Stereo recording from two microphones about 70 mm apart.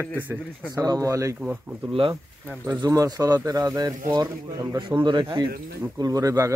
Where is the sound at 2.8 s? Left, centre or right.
Right.